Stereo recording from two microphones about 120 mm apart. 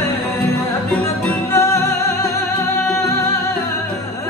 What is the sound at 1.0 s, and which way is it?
Music, 20° left (ahead or behind).